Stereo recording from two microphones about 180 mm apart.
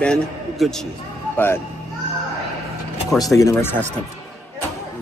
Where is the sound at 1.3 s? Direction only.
10° left (ahead or behind).